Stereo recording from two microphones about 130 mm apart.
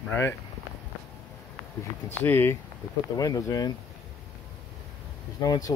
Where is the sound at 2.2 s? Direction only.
15° left (ahead or behind).